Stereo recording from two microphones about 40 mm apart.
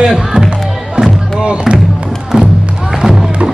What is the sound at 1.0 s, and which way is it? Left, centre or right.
Music, right.